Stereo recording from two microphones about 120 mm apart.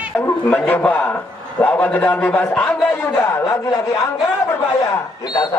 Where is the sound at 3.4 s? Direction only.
30° left (ahead or behind).